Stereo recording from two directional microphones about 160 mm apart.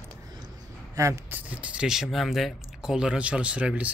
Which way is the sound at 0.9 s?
20° right (ahead or behind).